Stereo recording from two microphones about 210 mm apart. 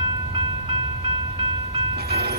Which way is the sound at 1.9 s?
50° right (ahead or behind).